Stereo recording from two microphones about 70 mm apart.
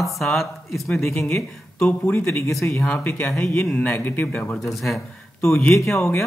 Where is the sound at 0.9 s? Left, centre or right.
Left.